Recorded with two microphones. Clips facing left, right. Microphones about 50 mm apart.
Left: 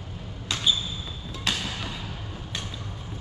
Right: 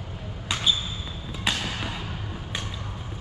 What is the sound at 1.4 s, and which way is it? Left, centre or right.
Music, centre.